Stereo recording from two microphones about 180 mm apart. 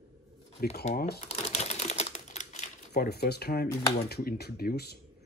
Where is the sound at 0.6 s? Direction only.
55° left (ahead or behind).